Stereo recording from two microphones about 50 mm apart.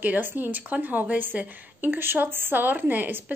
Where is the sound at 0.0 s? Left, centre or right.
Right.